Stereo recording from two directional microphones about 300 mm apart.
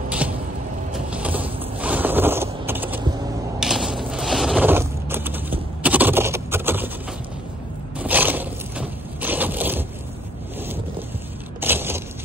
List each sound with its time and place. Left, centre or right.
0.9 s a sound: centre
3.5 s mechanisms: centre
8.0 s crushing: centre
11.6 s vehicle: centre